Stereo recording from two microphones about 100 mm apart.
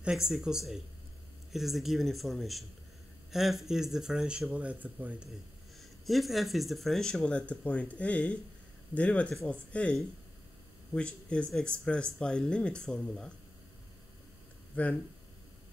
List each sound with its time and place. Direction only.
0.0 s speech: 5° right (ahead or behind)
5.8 s speech: centre (ahead or behind)
14.8 s speech: 15° left (ahead or behind)